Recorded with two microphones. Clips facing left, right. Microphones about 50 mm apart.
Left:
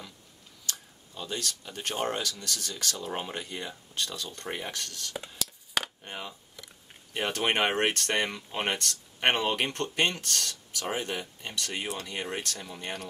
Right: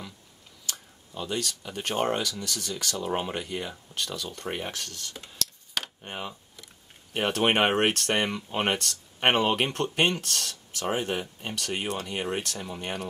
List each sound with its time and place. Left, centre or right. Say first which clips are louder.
0.7 s speech: right 1 dB; right
5.3 s a sound: even; centre
6.0 s speech: right 3 dB; centre
12.6 s speech: right 3 dB; right